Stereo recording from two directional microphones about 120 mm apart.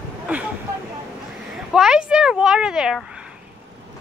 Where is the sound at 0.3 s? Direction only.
10° right (ahead or behind).